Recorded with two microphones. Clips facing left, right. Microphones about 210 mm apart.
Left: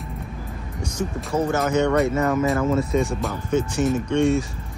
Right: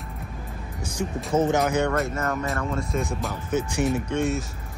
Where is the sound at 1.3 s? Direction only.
20° right (ahead or behind).